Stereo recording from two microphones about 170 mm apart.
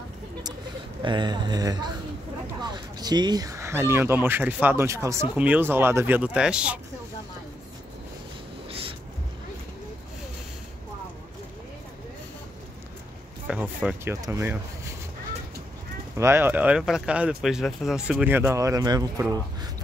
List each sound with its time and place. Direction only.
1.0 s a man's voice: 25° right (ahead or behind); by 6.8 s 5° right (ahead or behind)
8.6 s a sound: 35° right (ahead or behind)
13.5 s speech: 10° right (ahead or behind)
16.2 s speech: 15° right (ahead or behind)